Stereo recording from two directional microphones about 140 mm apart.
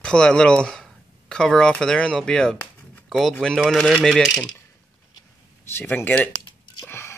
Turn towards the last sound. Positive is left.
turn(degrees=15)  # may be behind; listen again after turning